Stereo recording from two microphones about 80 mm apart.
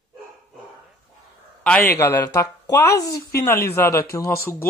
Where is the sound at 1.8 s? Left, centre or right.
Left.